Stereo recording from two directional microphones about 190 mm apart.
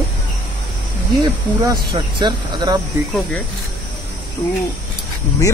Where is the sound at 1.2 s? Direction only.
20° right (ahead or behind).